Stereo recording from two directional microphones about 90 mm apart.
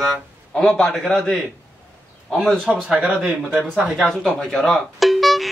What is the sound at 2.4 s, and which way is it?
Speech, 5° left (ahead or behind).